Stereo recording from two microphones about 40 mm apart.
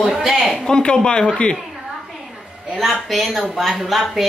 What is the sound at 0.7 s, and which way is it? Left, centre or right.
Speech, centre.